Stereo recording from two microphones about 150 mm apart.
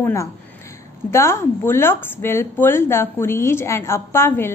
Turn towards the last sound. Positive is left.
turn(degrees=15)  # may be behind; listen again after turning